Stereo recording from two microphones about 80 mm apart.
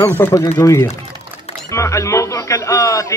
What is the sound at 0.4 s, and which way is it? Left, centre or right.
Speech, left.